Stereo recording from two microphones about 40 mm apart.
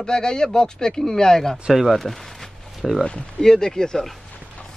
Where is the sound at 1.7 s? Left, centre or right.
Centre.